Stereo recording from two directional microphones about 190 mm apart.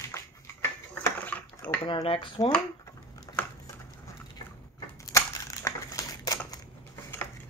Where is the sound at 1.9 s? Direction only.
25° left (ahead or behind).